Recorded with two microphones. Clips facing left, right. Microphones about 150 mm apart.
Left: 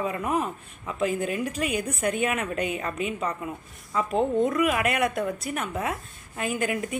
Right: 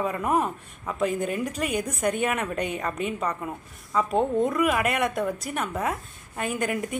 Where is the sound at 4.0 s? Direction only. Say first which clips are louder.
Even; centre (ahead or behind).